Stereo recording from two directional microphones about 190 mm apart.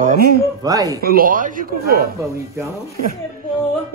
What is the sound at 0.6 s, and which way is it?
Speech, 20° right (ahead or behind).